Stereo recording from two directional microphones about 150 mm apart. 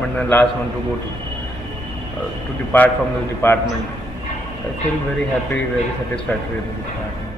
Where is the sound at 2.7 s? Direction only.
15° left (ahead or behind).